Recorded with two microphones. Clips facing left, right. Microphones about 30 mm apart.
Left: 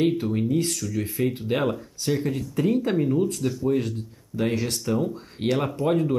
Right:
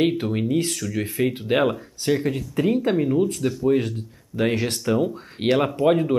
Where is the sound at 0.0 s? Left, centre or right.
Right.